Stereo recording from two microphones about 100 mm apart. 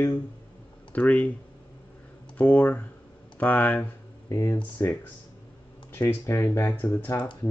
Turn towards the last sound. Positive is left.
turn(degrees=25)  # may be behind; listen again after turning